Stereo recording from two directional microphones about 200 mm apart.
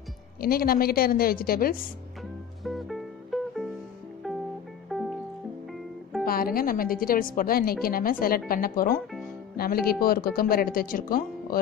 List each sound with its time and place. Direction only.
0.4 s a woman's voice: 50° left (ahead or behind)
2.6 s music: centre (ahead or behind)
4.9 s music: centre (ahead or behind)
6.2 s a woman's voice: 45° left (ahead or behind)